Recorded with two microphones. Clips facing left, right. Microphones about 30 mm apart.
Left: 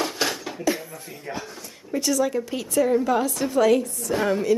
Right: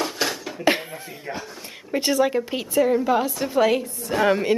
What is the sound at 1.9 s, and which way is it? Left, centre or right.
Speech, right.